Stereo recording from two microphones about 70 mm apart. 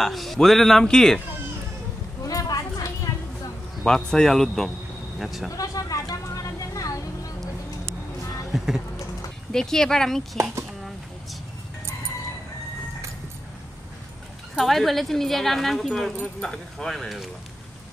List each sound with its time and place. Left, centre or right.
0.0 s speech: centre
2.2 s clip-clop: left
3.8 s speech: centre
5.6 s vehicle: left
8.5 s speech: centre
9.5 s speech: centre
14.6 s speech: centre